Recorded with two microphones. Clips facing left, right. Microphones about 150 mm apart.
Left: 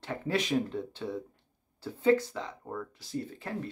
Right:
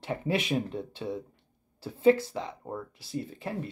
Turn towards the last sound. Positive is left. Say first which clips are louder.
# right 1 dB
turn(degrees=-15)  # may be behind; listen again after turning